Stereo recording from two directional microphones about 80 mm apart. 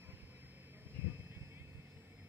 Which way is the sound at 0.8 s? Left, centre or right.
Right.